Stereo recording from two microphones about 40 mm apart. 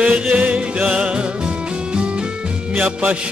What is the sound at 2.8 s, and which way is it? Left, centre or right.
Music, right.